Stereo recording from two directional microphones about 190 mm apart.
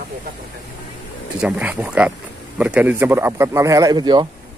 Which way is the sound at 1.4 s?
5° right (ahead or behind).